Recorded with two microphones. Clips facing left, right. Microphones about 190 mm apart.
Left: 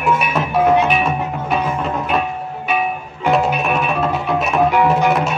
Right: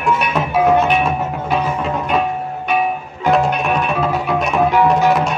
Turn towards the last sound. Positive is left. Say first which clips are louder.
# right 1 dB
turn(degrees=5)  # may be behind; listen again after turning